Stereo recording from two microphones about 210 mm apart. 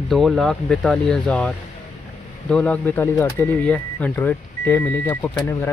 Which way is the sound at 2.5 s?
5° left (ahead or behind).